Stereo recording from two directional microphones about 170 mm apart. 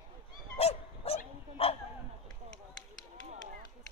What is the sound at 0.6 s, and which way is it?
Dog, 35° left (ahead or behind).